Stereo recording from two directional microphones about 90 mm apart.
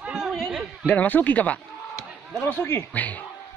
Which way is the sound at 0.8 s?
15° left (ahead or behind).